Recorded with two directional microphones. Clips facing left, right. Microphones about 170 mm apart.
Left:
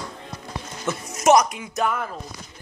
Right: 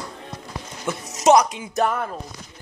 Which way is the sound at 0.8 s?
15° right (ahead or behind).